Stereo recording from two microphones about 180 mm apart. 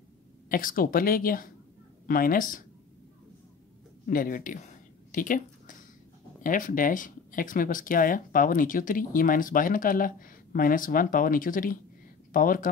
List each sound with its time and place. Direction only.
0.5 s speech: 50° left (ahead or behind)
4.0 s a woman's voice: 50° left (ahead or behind)